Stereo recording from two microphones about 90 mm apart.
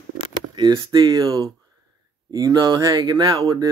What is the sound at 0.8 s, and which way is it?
A man's voice, 45° right (ahead or behind).